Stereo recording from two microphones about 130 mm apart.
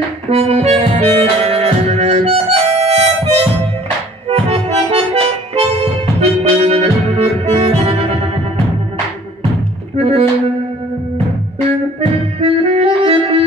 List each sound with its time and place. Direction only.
0.3 s music: 50° right (ahead or behind)
6.2 s accordion: 50° right (ahead or behind)
9.9 s music: 50° right (ahead or behind)
12.4 s saxophone: 50° right (ahead or behind)